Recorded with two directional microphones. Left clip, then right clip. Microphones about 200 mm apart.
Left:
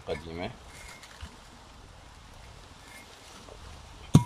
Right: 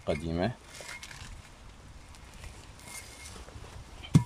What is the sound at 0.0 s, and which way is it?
Speech, 40° right (ahead or behind).